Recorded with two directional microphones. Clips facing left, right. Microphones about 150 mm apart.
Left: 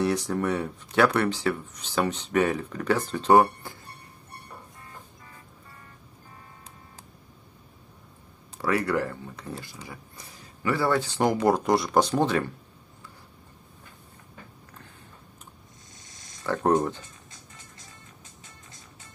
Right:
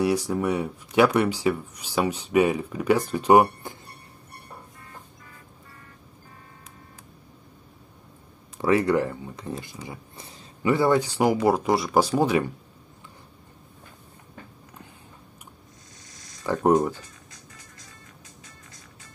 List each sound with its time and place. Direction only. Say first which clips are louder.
0.0 s speech: right 2 dB; 10° right (ahead or behind)
8.5 s speech: right 5 dB; 20° right (ahead or behind)
16.0 s a sound: right 2 dB; 25° left (ahead or behind)
16.4 s speech: right 3 dB; 15° right (ahead or behind)
16.9 s music: right 2 dB; 25° left (ahead or behind)